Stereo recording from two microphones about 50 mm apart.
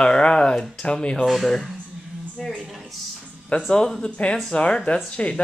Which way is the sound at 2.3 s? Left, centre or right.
Centre.